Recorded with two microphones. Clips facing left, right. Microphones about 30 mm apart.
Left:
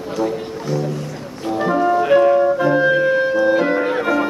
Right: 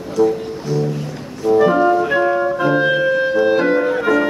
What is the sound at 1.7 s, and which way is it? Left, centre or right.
Music, centre.